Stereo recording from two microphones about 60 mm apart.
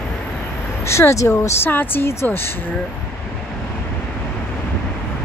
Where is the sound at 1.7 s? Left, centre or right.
Left.